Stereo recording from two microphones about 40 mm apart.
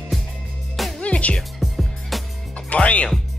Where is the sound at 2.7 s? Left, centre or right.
Left.